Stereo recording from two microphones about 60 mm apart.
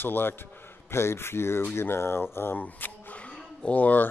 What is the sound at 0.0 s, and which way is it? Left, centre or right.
Speech, left.